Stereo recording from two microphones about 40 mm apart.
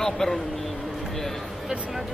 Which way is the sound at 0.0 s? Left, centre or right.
Centre.